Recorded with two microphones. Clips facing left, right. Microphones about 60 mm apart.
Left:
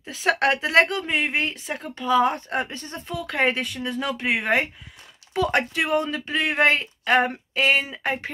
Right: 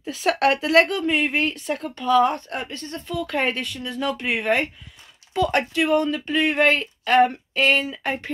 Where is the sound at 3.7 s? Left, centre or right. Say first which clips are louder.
Right 1 dB; centre.